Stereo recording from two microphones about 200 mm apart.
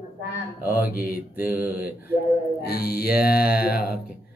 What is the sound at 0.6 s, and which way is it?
Mantra, 10° right (ahead or behind).